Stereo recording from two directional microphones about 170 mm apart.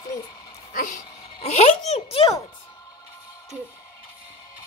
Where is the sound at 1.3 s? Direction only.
40° left (ahead or behind).